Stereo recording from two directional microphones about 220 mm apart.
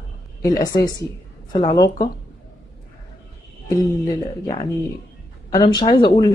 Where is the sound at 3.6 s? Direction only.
15° left (ahead or behind).